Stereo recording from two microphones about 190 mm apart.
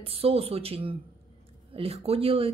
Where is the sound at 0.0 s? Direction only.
30° right (ahead or behind).